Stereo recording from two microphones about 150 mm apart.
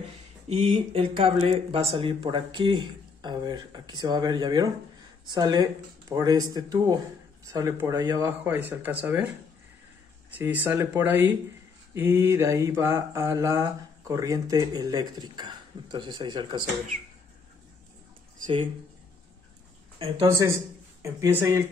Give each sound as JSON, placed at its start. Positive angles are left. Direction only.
{"t": 0.5, "sound": "speech", "side_deg": -40}
{"t": 5.2, "sound": "mantra", "side_deg": -25}
{"t": 7.5, "sound": "speech", "side_deg": -20}
{"t": 10.3, "sound": "speech", "side_deg": -10}
{"t": 11.9, "sound": "mantra", "side_deg": -15}
{"t": 20.2, "sound": "speech", "side_deg": -20}